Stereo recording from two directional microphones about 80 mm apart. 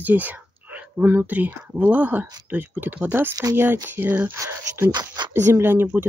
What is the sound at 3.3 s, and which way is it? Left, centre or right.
Speech, right.